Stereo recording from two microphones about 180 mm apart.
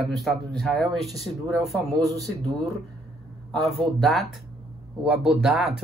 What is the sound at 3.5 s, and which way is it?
Speech, centre (ahead or behind).